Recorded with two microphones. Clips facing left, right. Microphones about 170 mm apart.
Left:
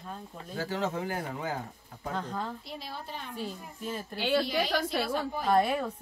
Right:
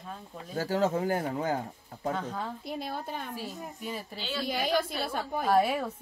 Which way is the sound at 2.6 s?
50° right (ahead or behind).